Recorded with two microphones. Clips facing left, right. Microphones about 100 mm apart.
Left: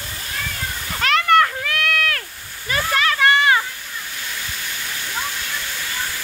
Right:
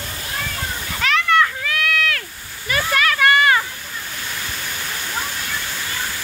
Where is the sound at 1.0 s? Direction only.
55° left (ahead or behind).